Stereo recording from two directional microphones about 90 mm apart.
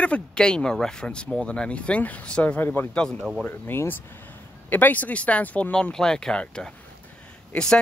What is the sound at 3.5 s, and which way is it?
Speech, 25° left (ahead or behind).